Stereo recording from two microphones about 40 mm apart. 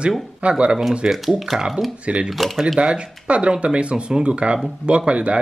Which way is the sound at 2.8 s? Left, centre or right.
Centre.